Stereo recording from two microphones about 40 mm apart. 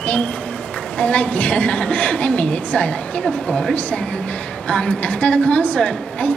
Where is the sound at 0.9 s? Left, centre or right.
Left.